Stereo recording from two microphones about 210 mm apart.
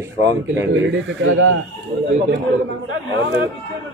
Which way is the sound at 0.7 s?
65° right (ahead or behind).